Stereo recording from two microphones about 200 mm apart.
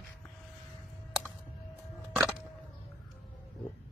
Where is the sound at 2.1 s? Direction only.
5° right (ahead or behind).